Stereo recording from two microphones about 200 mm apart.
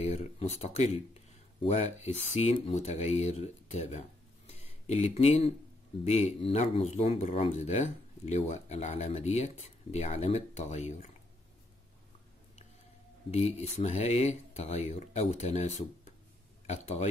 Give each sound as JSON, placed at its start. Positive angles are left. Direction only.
{"t": 0.0, "sound": "speech", "side_deg": 30}
{"t": 4.5, "sound": "a sound", "side_deg": 35}
{"t": 6.0, "sound": "speech", "side_deg": 35}
{"t": 13.3, "sound": "speech", "side_deg": 30}